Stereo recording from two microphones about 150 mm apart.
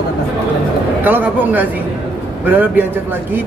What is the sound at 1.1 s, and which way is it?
Speech, 10° right (ahead or behind).